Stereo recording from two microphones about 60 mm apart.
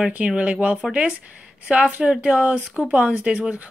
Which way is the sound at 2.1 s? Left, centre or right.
Right.